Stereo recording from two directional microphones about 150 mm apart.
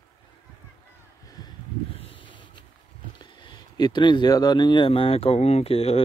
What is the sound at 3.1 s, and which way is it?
Speech, 30° left (ahead or behind).